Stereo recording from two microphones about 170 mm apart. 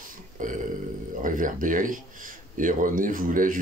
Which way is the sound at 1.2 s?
50° right (ahead or behind).